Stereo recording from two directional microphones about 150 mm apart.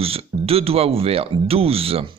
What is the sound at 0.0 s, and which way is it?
Speech, 40° right (ahead or behind).